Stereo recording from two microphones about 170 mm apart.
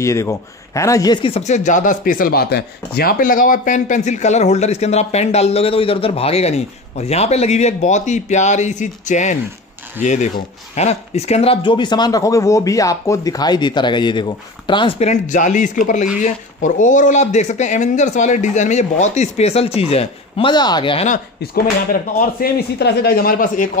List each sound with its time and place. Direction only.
0.0 s speech: 20° left (ahead or behind)
15.0 s speech: 45° left (ahead or behind)
22.2 s speech: 65° left (ahead or behind)